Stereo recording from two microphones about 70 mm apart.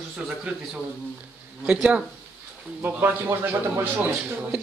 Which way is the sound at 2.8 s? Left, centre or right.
Right.